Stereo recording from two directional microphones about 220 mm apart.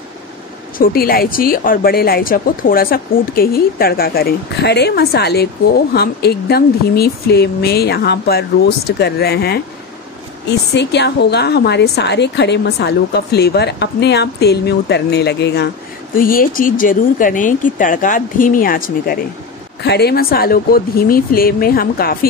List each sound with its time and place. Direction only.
0.7 s a woman's voice: 40° left (ahead or behind)
10.7 s a woman's voice: 50° left (ahead or behind)